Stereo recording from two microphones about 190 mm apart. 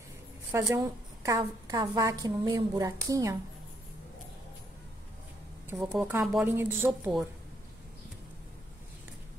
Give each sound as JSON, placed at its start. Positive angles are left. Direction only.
{"t": 0.5, "sound": "a woman's voice", "side_deg": -15}
{"t": 5.7, "sound": "a woman's voice", "side_deg": -15}